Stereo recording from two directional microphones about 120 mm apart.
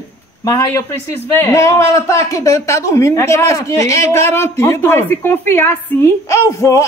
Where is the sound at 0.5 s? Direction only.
25° left (ahead or behind).